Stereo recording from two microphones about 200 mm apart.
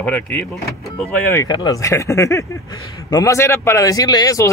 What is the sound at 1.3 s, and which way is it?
A man's voice, 15° left (ahead or behind).